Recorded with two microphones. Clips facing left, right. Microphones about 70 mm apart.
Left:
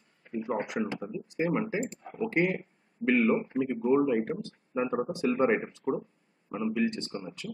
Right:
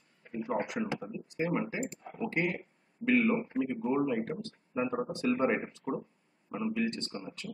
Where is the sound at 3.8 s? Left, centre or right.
Centre.